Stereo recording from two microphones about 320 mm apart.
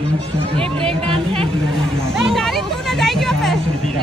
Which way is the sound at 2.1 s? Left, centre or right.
Centre.